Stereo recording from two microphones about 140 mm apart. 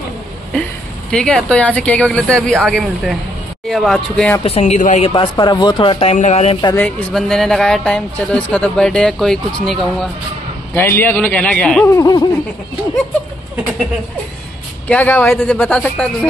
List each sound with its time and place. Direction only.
1.1 s speech: 5° left (ahead or behind)
4.4 s speech: 45° left (ahead or behind)
5.0 s speech: 40° left (ahead or behind)
6.1 s speech: 55° left (ahead or behind)
6.7 s speech: 10° left (ahead or behind)
10.7 s speech: 15° left (ahead or behind)
11.9 s speech: 25° left (ahead or behind)
14.9 s speech: 10° left (ahead or behind)